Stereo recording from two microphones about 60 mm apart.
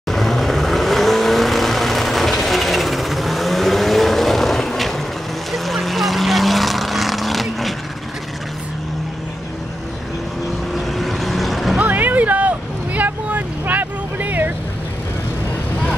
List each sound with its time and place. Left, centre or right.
0.1 s vehicle: centre
10.9 s vehicle: centre
11.9 s vehicle: right